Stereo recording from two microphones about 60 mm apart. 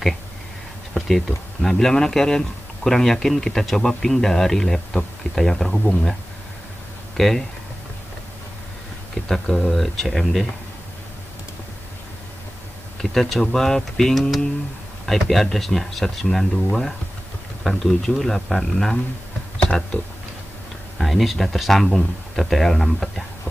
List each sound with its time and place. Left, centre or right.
1.0 s speech: centre
7.2 s speech: centre
9.3 s speech: centre
13.1 s speech: centre
21.0 s speech: centre